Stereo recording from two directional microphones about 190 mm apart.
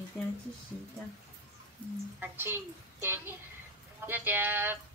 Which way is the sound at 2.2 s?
10° right (ahead or behind).